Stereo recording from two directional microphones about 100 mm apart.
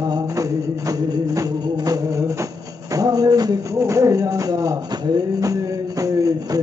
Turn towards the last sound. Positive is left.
turn(degrees=-40)  # may be behind; listen again after turning